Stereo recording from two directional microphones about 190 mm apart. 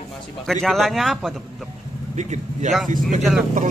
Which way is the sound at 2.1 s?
40° right (ahead or behind).